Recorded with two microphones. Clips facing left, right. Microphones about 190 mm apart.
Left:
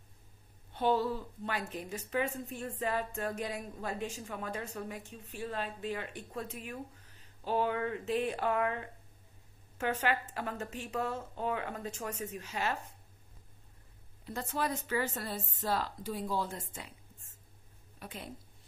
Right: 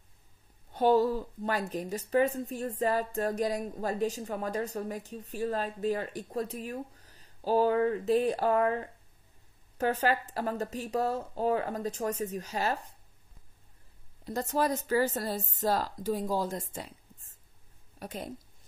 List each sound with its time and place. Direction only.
0.7 s a woman's voice: 40° right (ahead or behind)
14.2 s a woman's voice: 40° right (ahead or behind)